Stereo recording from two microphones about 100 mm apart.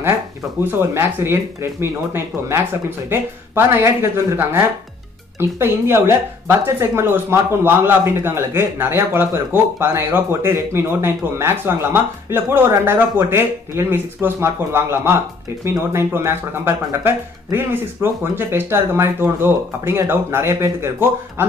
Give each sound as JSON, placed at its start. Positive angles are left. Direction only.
{"t": 0.7, "sound": "speech", "side_deg": -20}